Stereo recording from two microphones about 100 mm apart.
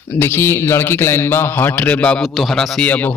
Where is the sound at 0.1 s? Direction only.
20° left (ahead or behind).